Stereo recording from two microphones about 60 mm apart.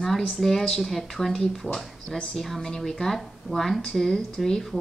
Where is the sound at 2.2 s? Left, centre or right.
Centre.